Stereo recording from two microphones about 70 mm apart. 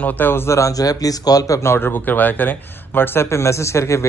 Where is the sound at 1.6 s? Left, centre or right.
Left.